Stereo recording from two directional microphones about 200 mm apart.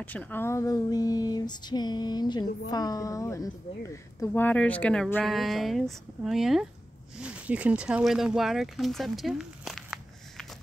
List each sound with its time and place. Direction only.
0.0 s a woman's voice: 10° left (ahead or behind)